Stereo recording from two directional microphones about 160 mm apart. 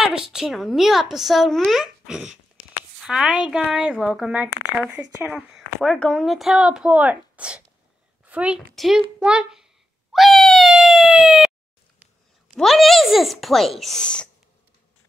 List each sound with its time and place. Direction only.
0.0 s a woman's voice: 5° right (ahead or behind)
10.1 s a sound: centre (ahead or behind)
12.5 s a woman's voice: centre (ahead or behind)